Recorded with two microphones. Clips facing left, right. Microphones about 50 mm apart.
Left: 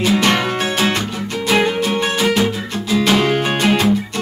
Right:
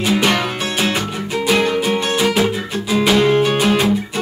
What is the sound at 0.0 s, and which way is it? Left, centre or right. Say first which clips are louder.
Music: left 1 dB; centre.